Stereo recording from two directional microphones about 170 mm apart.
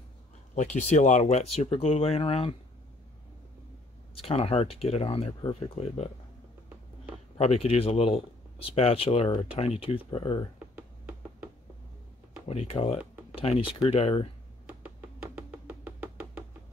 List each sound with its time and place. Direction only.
0.6 s speech: 45° left (ahead or behind)
4.2 s speech: 35° left (ahead or behind)
7.3 s speech: 35° left (ahead or behind)
10.8 s a sound: 10° right (ahead or behind)
12.4 s speech: 35° left (ahead or behind)
14.8 s music: 10° right (ahead or behind)